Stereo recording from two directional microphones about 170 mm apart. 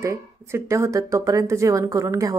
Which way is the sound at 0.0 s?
15° right (ahead or behind).